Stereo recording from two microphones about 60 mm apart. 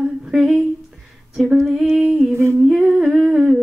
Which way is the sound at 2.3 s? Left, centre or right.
Right.